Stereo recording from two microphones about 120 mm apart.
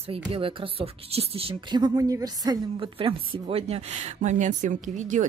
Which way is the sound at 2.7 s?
45° right (ahead or behind).